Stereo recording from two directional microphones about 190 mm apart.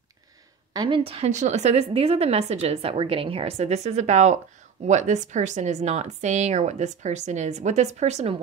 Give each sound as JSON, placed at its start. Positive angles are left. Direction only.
{"t": 0.7, "sound": "a woman's voice", "side_deg": -25}